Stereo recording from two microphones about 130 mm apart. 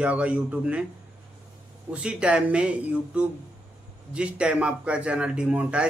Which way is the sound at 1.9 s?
10° right (ahead or behind).